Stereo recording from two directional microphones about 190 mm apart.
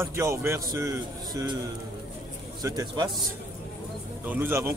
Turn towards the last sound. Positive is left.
turn(degrees=-10)  # may be behind; listen again after turning